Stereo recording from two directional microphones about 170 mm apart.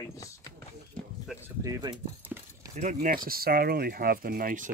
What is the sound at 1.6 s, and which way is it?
Speech, 20° right (ahead or behind).